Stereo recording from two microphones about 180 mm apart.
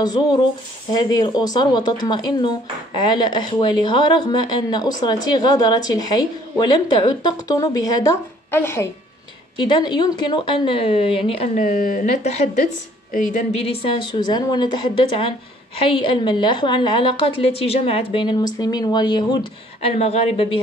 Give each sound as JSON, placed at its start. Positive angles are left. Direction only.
{"t": 0.0, "sound": "a woman's voice", "side_deg": 25}
{"t": 9.6, "sound": "a woman's voice", "side_deg": 25}